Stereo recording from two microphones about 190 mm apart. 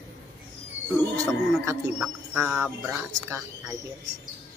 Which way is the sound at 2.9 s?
15° right (ahead or behind).